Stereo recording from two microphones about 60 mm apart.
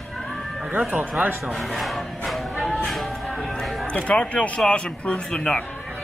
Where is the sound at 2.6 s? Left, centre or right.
Centre.